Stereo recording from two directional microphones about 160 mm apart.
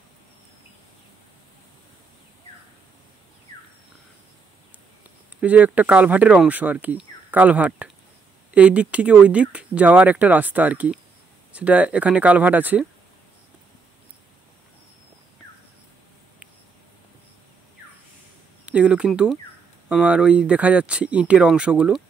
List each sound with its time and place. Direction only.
5.4 s speech: 10° right (ahead or behind)
18.7 s speech: 5° right (ahead or behind)